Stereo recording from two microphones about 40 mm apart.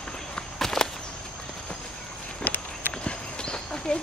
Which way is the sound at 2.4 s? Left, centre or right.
Left.